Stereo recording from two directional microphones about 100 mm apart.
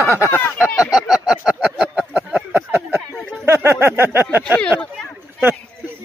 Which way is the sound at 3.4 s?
25° right (ahead or behind).